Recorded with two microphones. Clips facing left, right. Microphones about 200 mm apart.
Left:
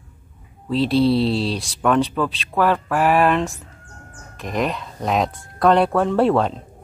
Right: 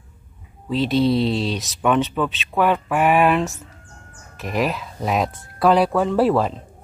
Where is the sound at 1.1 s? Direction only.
30° left (ahead or behind).